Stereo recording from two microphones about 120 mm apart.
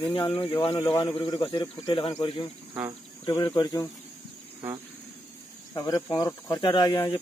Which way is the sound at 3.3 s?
30° left (ahead or behind).